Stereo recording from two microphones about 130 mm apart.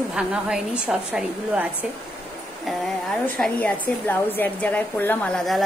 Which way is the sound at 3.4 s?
10° left (ahead or behind).